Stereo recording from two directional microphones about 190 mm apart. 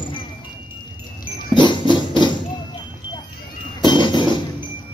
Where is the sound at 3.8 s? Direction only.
25° left (ahead or behind).